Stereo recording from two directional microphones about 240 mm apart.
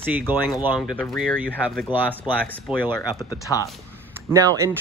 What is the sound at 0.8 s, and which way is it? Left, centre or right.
Speech, centre.